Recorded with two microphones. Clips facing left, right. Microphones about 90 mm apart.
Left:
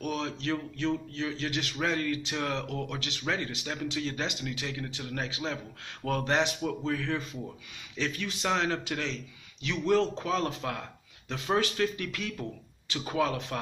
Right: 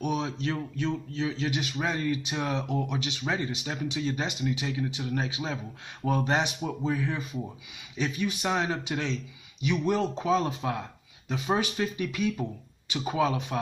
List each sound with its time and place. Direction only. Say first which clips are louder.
0.0 s speech: right 3 dB; 20° right (ahead or behind)